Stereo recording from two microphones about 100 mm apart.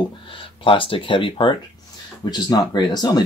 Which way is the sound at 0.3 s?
60° left (ahead or behind).